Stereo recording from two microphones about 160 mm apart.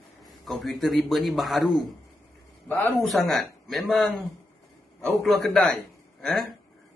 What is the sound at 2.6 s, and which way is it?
Speech, 10° left (ahead or behind).